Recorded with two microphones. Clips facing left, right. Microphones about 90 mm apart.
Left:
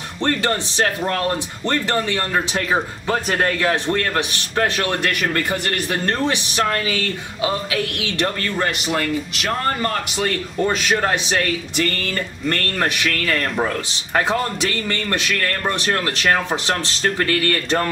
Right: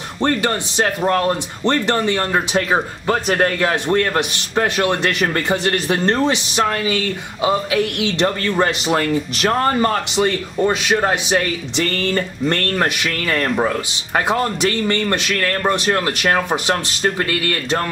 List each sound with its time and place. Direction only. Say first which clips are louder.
0.2 s speech: right 2 dB; 15° right (ahead or behind)
14.6 s speech: right 5 dB; 20° right (ahead or behind)